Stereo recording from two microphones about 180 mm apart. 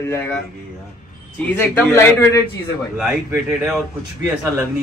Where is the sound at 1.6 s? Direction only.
15° left (ahead or behind).